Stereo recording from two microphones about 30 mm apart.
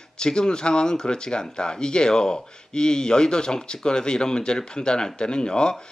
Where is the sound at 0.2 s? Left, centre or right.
Left.